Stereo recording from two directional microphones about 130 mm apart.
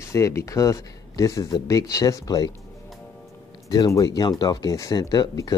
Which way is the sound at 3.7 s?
30° left (ahead or behind).